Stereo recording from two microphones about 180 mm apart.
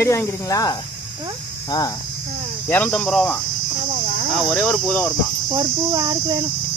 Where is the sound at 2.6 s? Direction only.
10° left (ahead or behind).